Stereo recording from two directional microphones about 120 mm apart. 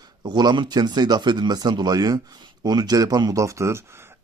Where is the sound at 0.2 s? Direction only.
35° right (ahead or behind).